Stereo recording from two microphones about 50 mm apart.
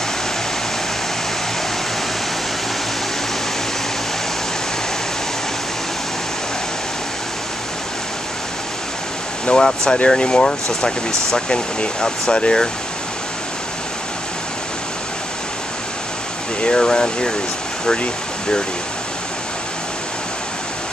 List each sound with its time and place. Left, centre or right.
9.5 s speech: centre
16.6 s speech: centre